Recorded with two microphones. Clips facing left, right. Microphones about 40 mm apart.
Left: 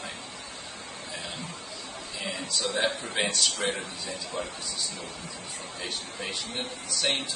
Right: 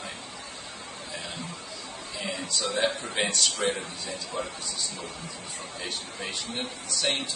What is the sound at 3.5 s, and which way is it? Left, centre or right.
Speech, left.